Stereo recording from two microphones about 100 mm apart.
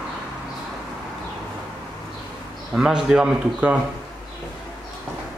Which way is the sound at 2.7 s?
5° right (ahead or behind).